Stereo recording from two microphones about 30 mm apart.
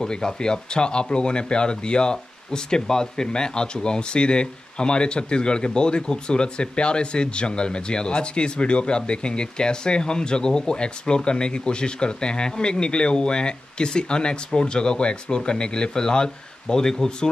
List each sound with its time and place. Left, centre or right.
0.0 s speech: left